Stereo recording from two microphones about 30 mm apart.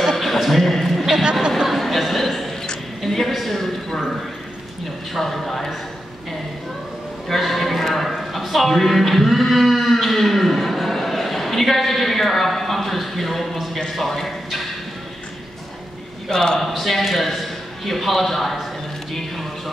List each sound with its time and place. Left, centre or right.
0.2 s a sound: centre
5.2 s a man's voice: centre
7.2 s a sound: centre
13.9 s a man's voice: centre
16.3 s a man's voice: left
16.5 s a man's voice: centre